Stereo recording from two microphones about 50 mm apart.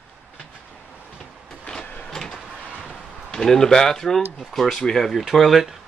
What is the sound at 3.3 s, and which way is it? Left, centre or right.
Speech, centre.